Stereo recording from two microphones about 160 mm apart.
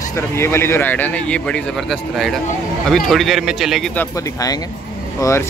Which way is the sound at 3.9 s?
20° left (ahead or behind).